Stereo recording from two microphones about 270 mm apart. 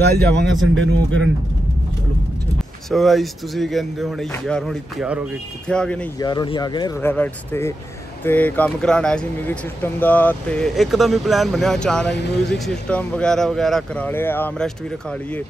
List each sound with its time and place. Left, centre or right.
0.1 s speech: right
2.9 s speech: centre
6.2 s speech: centre